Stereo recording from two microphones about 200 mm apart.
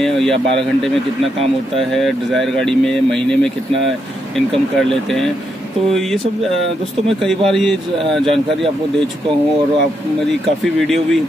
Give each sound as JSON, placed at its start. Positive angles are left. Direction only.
{"t": 0.0, "sound": "speech", "side_deg": 0}
{"t": 2.0, "sound": "speech", "side_deg": 0}
{"t": 7.2, "sound": "speech", "side_deg": 0}